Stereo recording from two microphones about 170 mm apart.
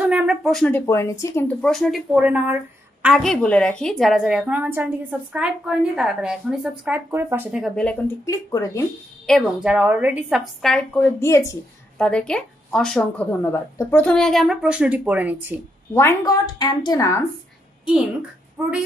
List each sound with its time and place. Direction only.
0.0 s speech: 10° right (ahead or behind); by 1.4 s 20° left (ahead or behind)
1.6 s a woman's voice: centre (ahead or behind)
7.6 s a woman's voice: 5° left (ahead or behind)
8.3 s speech: 20° left (ahead or behind)
9.2 s a woman's voice: centre (ahead or behind)
15.9 s a woman's voice: 15° left (ahead or behind)
18.6 s speech: 5° right (ahead or behind)